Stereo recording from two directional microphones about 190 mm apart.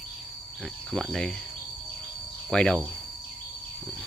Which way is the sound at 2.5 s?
5° left (ahead or behind).